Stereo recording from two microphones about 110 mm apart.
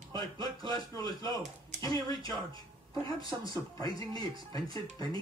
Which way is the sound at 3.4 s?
35° left (ahead or behind).